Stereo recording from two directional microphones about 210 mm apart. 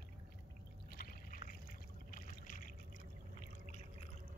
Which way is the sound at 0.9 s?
45° left (ahead or behind).